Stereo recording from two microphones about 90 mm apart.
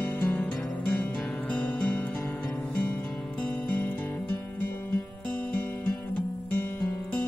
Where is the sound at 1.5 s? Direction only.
20° left (ahead or behind).